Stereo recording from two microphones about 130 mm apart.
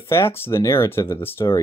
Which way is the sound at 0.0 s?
20° left (ahead or behind).